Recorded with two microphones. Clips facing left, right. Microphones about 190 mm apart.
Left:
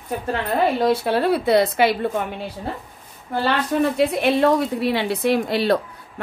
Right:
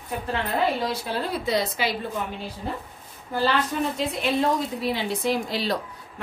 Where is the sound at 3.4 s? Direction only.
65° left (ahead or behind).